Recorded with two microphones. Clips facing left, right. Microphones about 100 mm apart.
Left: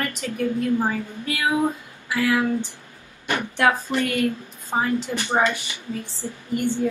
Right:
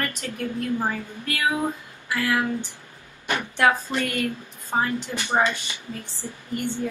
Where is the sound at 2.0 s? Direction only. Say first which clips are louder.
Left 3 dB; 10° left (ahead or behind).